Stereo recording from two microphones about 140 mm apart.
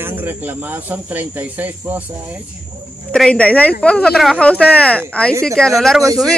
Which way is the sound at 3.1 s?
5° left (ahead or behind).